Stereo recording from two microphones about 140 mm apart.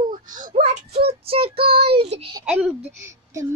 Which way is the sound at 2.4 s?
5° right (ahead or behind).